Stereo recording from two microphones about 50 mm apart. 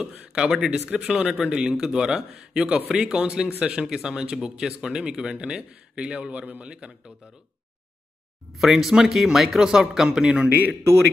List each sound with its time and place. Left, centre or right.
0.3 s speech: centre
3.8 s speech: centre
5.6 s a man's voice: right
8.5 s speech: centre
10.8 s a man's voice: right